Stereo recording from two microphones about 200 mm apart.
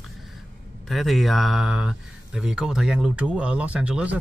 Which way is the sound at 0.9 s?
Centre (ahead or behind).